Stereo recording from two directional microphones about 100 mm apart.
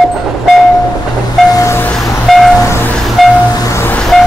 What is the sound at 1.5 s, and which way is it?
Vehicle, 30° left (ahead or behind).